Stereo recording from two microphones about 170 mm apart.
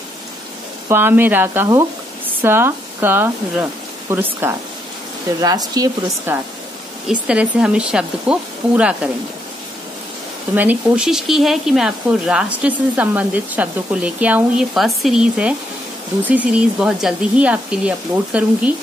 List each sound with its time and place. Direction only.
0.8 s speech: 10° right (ahead or behind)
7.1 s speech: 5° right (ahead or behind)
10.5 s speech: 10° right (ahead or behind)